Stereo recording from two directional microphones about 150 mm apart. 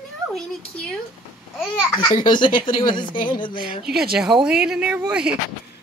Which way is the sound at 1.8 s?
25° left (ahead or behind).